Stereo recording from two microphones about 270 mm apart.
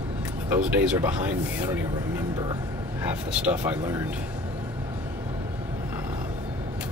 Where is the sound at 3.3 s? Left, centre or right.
Centre.